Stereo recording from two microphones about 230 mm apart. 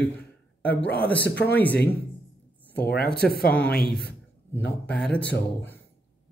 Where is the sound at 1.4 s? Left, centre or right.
Centre.